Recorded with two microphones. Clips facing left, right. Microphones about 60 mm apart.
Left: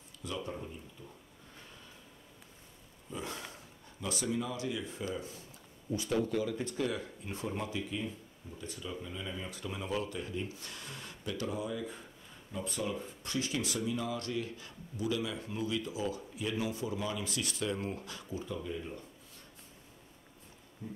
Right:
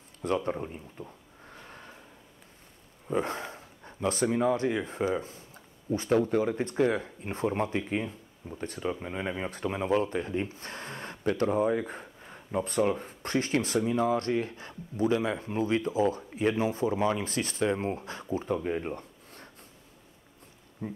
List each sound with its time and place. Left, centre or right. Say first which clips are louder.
0.2 s speech: right 10 dB; right
1.7 s snort: right 7 dB; right
3.1 s a sound: right 12 dB; right
3.3 s speech: right 7 dB; right
20.8 s speech: right 7 dB; right